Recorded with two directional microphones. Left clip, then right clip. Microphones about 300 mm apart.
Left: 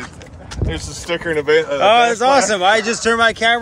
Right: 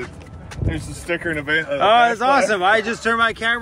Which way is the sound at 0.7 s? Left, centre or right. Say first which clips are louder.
Left 2 dB; centre.